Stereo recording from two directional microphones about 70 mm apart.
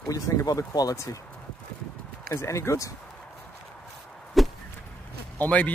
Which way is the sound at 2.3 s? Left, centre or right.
Left.